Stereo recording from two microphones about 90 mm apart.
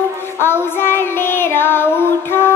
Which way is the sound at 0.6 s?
25° left (ahead or behind).